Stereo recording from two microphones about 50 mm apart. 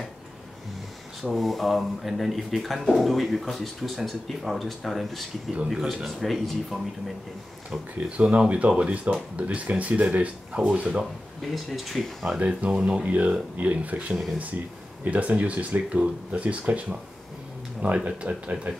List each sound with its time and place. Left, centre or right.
1.3 s speech: centre
8.2 s speech: right
10.6 s speech: centre
11.5 s speech: centre
12.4 s speech: right
17.8 s speech: right